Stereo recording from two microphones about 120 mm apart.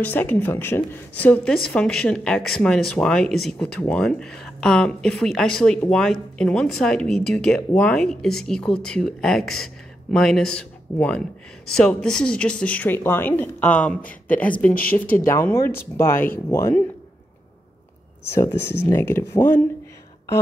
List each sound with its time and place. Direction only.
0.0 s speech: 15° left (ahead or behind)
18.3 s speech: 20° left (ahead or behind)